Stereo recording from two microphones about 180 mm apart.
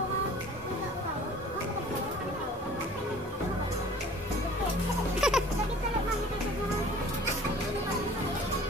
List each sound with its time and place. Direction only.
5.2 s music: 5° right (ahead or behind)